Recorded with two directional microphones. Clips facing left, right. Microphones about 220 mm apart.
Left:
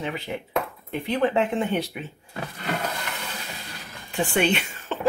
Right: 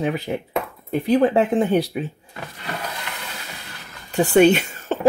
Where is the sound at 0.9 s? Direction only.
40° right (ahead or behind).